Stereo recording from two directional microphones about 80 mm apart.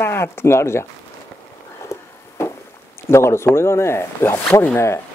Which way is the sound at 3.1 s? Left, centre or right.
Left.